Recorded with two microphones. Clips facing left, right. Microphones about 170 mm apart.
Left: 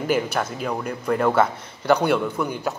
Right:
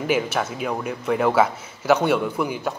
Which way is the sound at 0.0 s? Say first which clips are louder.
Even; 5° right (ahead or behind).